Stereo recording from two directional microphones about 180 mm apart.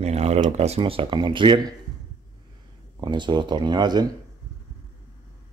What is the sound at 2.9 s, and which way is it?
Speech, 25° right (ahead or behind).